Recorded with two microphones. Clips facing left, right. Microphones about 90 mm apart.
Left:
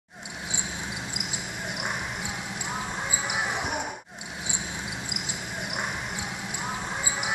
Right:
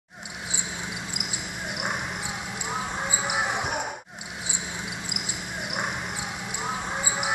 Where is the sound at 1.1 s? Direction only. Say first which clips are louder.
Even; 55° right (ahead or behind).